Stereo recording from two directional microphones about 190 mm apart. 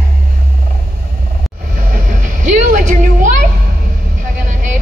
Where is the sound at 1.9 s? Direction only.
45° right (ahead or behind).